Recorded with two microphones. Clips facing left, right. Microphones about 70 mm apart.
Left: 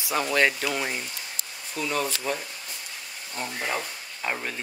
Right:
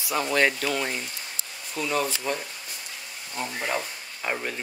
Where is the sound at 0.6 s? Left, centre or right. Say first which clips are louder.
Right 1 dB; centre.